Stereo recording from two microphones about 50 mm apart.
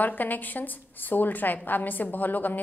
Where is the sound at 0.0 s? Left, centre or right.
Left.